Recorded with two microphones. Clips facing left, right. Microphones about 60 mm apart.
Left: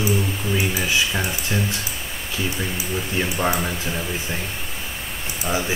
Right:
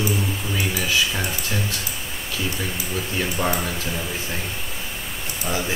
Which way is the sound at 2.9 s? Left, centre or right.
Centre.